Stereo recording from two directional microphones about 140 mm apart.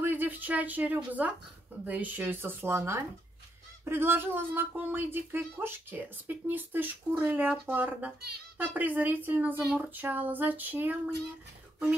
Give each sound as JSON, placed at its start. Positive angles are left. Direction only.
{"t": 0.0, "sound": "speech", "side_deg": -15}